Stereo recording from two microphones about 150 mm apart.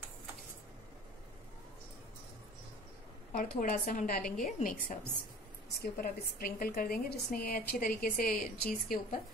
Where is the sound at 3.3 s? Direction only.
65° left (ahead or behind).